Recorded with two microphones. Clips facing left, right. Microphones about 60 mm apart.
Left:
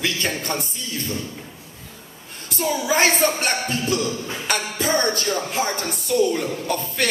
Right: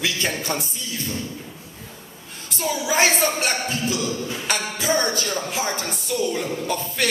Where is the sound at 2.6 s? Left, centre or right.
Centre.